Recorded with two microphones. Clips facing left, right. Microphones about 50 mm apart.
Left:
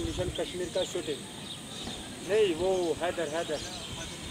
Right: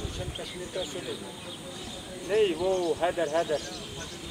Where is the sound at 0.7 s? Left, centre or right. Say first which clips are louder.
Left 3 dB; right.